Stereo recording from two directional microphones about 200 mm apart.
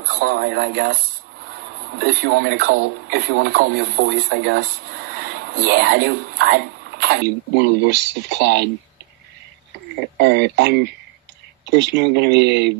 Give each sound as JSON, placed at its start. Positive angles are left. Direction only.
{"t": 0.1, "sound": "speech", "side_deg": -55}
{"t": 2.0, "sound": "speech", "side_deg": -50}
{"t": 10.3, "sound": "speech", "side_deg": -60}